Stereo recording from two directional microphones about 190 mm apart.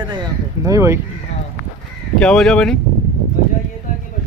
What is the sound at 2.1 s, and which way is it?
Speech, centre (ahead or behind).